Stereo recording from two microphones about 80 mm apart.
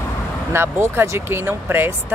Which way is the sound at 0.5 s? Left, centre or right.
Right.